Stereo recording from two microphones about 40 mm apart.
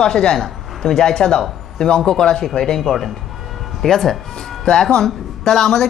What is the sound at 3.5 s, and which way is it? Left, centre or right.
Music, centre.